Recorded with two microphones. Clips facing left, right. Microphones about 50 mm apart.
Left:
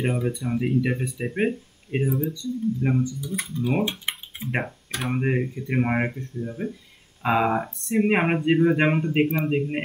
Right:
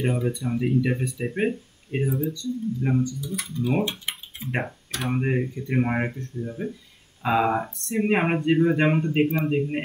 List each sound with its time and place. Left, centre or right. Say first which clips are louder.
0.0 s speech: even; centre
2.0 s speech: even; centre
2.3 s speech: left 2 dB; centre
4.4 s speech: even; centre